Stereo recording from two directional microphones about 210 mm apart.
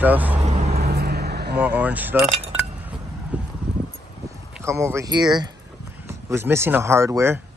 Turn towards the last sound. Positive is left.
turn(degrees=-15)  # may be behind; listen again after turning